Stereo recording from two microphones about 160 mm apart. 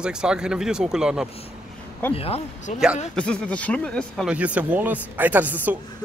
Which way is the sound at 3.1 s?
5° left (ahead or behind).